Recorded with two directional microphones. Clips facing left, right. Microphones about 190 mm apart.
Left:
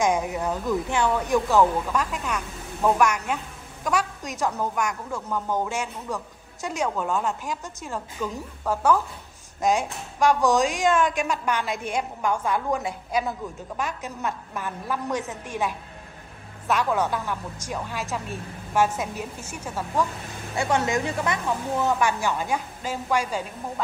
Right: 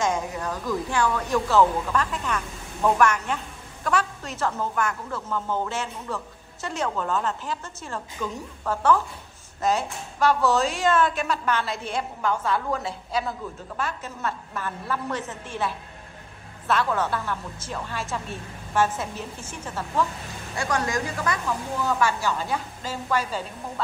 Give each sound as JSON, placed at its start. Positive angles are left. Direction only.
{"t": 0.0, "sound": "a woman's voice", "side_deg": 15}
{"t": 20.5, "sound": "a woman's voice", "side_deg": 25}